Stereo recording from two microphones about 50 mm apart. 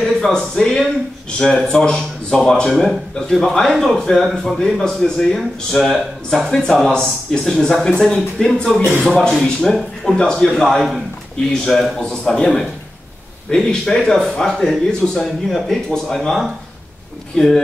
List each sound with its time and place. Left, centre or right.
0.0 s speech: centre
17.4 s speech: centre